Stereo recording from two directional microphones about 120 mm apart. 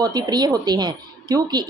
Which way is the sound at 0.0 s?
35° right (ahead or behind).